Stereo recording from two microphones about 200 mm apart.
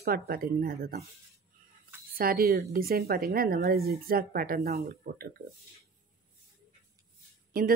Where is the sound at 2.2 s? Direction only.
50° right (ahead or behind).